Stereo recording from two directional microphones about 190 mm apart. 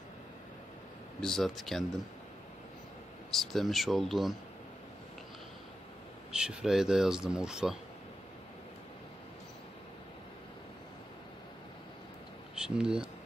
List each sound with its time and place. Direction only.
1.2 s speech: centre (ahead or behind)
3.3 s speech: centre (ahead or behind)
6.3 s speech: 5° right (ahead or behind)
12.5 s speech: 5° right (ahead or behind)